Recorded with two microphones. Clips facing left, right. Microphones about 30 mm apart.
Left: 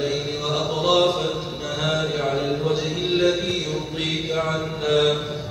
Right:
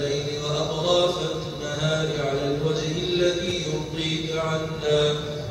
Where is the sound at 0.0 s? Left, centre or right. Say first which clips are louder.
Left 2 dB; centre.